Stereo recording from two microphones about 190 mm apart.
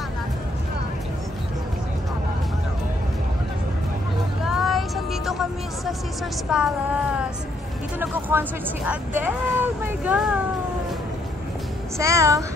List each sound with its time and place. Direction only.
4.5 s music: centre (ahead or behind)
6.5 s a woman's voice: 5° right (ahead or behind)
12.0 s speech: 15° right (ahead or behind)